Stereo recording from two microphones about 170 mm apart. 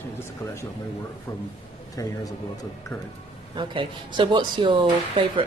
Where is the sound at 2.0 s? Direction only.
20° left (ahead or behind).